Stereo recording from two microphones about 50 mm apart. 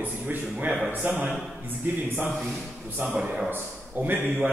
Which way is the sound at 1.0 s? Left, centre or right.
Right.